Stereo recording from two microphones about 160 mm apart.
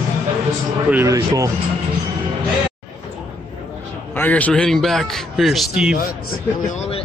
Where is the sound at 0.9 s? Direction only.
15° right (ahead or behind).